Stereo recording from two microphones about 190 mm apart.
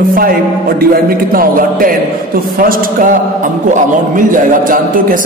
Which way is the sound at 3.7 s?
45° right (ahead or behind).